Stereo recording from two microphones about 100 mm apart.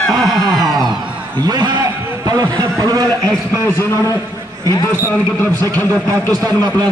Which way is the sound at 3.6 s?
25° left (ahead or behind).